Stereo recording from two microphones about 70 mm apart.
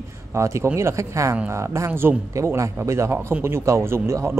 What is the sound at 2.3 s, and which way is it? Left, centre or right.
Speech, right.